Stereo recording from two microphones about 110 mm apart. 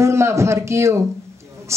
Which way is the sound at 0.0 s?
25° right (ahead or behind).